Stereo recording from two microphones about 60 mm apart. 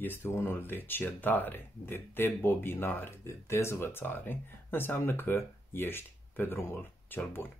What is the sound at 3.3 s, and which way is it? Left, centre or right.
Speech, left.